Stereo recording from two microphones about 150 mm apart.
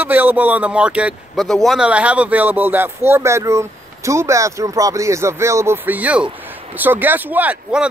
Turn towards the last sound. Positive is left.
turn(degrees=-10)  # may be behind; listen again after turning